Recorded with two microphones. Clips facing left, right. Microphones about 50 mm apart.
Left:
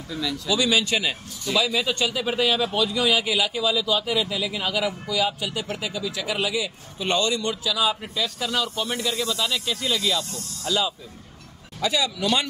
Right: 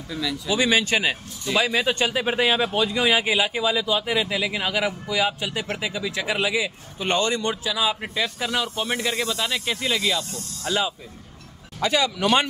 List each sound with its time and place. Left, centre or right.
0.1 s speech: centre
0.5 s a man's voice: right
11.8 s speech: right